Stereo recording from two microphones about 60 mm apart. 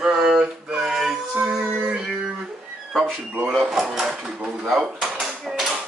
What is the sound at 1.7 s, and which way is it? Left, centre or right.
Music, centre.